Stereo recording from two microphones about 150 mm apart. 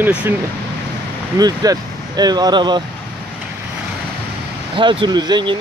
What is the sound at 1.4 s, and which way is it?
Speech, 25° right (ahead or behind).